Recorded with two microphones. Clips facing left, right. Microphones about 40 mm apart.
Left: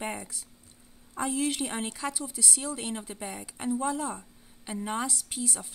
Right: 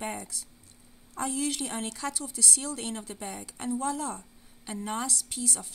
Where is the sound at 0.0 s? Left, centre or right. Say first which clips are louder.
Even; centre.